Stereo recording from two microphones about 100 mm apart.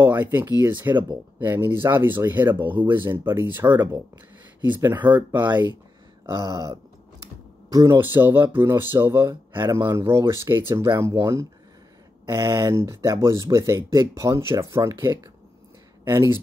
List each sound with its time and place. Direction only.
0.0 s speech: 20° right (ahead or behind)
6.2 s speech: 35° right (ahead or behind)
8.0 s speech: 20° right (ahead or behind)
16.0 s speech: 30° right (ahead or behind)